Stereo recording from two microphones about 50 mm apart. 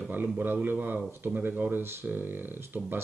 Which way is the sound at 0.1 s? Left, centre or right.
Right.